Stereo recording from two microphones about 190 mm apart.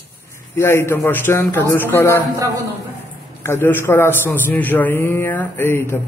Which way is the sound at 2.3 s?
20° right (ahead or behind).